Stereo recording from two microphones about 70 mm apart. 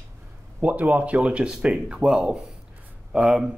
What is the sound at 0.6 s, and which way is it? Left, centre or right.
Speech, right.